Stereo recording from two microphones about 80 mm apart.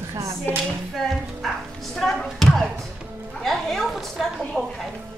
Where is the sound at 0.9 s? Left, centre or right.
Centre.